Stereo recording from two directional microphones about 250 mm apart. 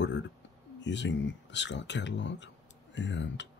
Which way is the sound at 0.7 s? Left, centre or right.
Left.